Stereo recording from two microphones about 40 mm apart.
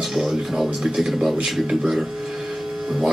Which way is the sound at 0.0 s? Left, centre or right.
Centre.